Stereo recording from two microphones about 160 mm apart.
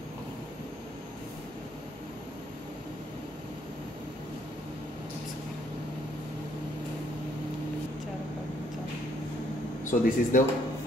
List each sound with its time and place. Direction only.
9.8 s speech: 55° left (ahead or behind)